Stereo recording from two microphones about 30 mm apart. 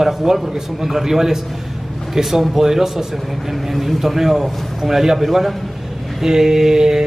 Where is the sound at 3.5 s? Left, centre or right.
Centre.